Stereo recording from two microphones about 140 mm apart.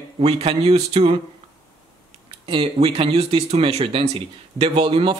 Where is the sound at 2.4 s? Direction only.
40° right (ahead or behind).